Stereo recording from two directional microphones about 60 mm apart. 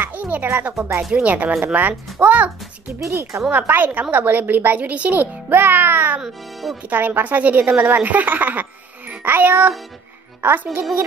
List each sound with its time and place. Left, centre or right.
0.0 s music: right
1.1 s a woman's voice: right
3.0 s speech: right
3.5 s a child's voice: right
6.2 s speech: centre
6.8 s a woman's voice: right